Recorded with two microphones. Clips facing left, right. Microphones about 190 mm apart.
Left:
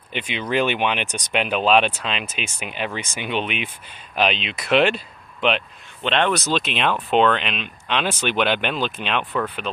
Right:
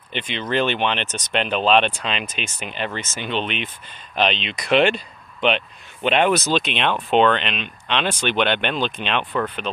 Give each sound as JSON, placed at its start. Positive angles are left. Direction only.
{"t": 0.1, "sound": "speech", "side_deg": 10}